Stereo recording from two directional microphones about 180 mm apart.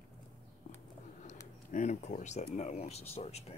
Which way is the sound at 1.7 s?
40° left (ahead or behind).